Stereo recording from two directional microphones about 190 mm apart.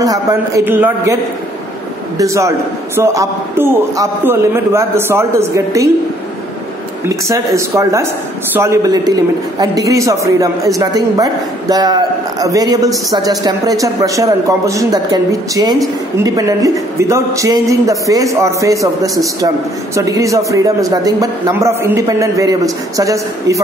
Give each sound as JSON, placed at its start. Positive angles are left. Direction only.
{"t": 0.0, "sound": "a man's voice", "side_deg": -15}
{"t": 2.1, "sound": "a man's voice", "side_deg": -15}
{"t": 7.2, "sound": "a man's voice", "side_deg": -15}